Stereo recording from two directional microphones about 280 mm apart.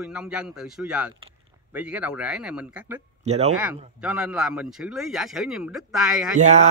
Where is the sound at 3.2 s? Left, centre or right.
Right.